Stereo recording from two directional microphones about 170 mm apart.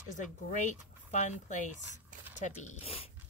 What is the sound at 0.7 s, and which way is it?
Speech, 45° left (ahead or behind).